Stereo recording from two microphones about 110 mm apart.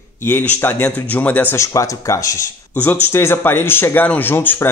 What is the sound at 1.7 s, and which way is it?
Speech, 30° left (ahead or behind).